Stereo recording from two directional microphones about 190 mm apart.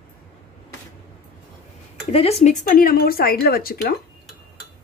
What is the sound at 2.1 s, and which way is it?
Speech, 35° left (ahead or behind).